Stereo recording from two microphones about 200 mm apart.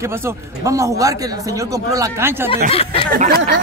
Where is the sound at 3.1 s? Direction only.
50° right (ahead or behind).